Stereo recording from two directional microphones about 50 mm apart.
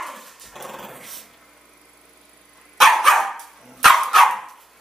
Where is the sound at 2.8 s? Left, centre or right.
Centre.